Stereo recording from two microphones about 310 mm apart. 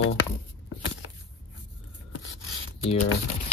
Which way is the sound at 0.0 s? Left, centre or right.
Left.